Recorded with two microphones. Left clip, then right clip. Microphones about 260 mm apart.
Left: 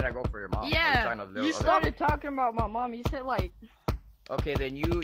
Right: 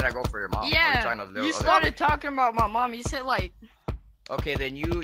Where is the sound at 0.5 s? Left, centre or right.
Centre.